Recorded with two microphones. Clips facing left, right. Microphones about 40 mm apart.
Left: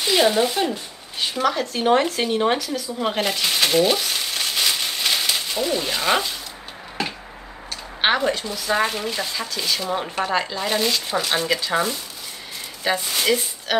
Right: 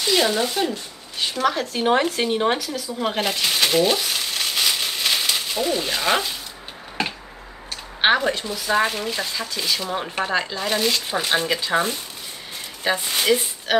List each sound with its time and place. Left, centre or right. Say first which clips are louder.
0.0 s speech: left 2 dB; centre
8.0 s speech: right 1 dB; centre
11.1 s speech: even; right
12.9 s speech: right 1 dB; centre